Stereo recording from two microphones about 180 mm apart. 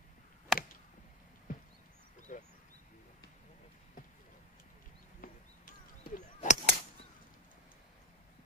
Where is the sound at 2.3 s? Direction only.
45° left (ahead or behind).